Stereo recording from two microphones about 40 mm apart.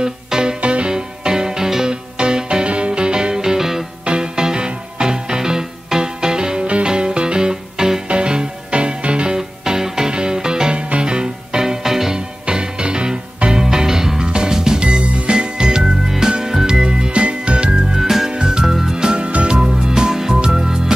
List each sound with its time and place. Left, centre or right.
0.0 s music: centre
4.0 s music: right
9.4 s music: centre
12.4 s music: right
19.0 s music: right
19.5 s music: centre